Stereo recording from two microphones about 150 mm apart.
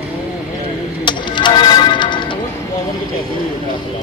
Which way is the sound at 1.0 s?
30° left (ahead or behind).